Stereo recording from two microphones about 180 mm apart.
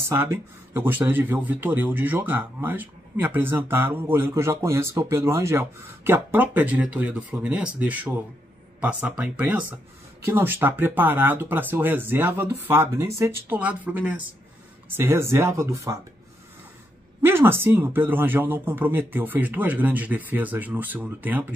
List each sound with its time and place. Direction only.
0.0 s speech: 10° right (ahead or behind)
9.2 s speech: 10° right (ahead or behind)
17.2 s speech: 15° right (ahead or behind)